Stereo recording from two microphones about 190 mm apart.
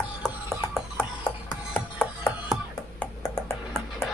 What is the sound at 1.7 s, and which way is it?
Music, 5° left (ahead or behind).